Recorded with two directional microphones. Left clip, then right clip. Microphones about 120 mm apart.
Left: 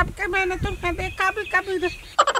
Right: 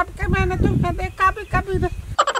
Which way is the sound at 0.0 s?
Centre (ahead or behind).